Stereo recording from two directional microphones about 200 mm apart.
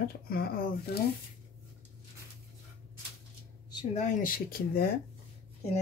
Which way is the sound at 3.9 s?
45° left (ahead or behind).